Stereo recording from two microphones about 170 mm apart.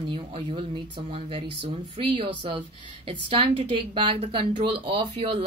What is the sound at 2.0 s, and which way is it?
A woman's voice, 30° right (ahead or behind).